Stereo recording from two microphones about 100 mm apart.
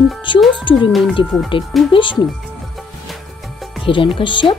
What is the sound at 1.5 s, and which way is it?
Speech, 60° left (ahead or behind).